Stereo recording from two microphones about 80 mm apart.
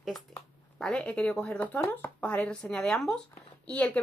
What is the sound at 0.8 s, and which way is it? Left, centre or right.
Speech, centre.